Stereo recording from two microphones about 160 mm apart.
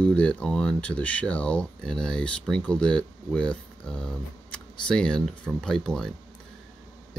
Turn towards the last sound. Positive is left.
turn(degrees=5)  # may be behind; listen again after turning